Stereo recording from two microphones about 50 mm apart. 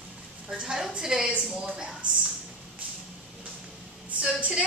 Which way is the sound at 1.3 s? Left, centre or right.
Centre.